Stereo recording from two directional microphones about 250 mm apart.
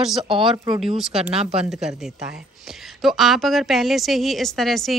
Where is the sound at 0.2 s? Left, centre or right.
Centre.